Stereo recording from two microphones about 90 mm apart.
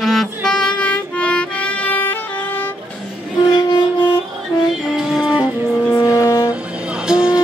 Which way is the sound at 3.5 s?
60° left (ahead or behind).